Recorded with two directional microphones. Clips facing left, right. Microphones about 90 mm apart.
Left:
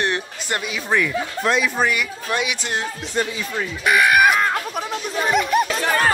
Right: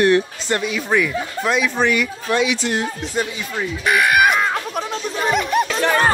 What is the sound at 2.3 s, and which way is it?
Speech, 15° left (ahead or behind).